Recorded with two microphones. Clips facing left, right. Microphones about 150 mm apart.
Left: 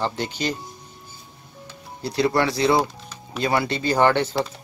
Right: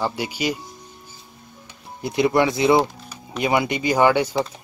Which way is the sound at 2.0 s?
20° right (ahead or behind).